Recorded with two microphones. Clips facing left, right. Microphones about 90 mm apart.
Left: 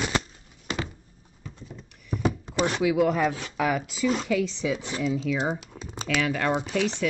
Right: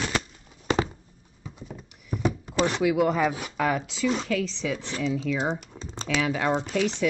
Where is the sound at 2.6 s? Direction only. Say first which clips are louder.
Left 1 dB; centre (ahead or behind).